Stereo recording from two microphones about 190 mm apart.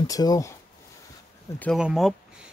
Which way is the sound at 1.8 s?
5° right (ahead or behind).